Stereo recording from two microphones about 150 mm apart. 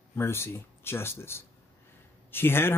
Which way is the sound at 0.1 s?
15° left (ahead or behind).